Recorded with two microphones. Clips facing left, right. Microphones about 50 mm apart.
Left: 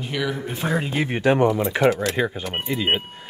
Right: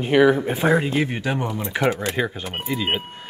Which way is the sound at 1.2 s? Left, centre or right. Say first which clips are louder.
Left 7 dB; left.